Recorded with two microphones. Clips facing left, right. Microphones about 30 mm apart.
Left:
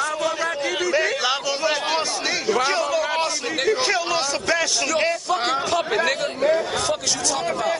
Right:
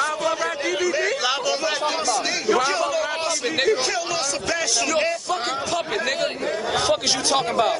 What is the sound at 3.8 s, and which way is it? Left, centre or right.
Speech, centre.